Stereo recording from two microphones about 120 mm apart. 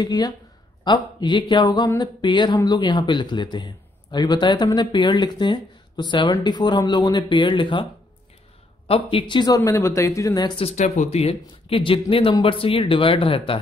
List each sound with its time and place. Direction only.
0.0 s speech: 35° left (ahead or behind)
8.8 s speech: 50° left (ahead or behind)
9.6 s speech: 20° left (ahead or behind)
10.8 s speech: 65° left (ahead or behind); by 13.6 s 50° left (ahead or behind)